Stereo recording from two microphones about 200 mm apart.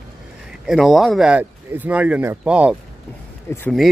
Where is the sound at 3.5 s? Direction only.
10° left (ahead or behind).